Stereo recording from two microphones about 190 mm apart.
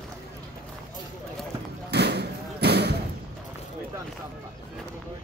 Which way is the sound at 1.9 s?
60° right (ahead or behind).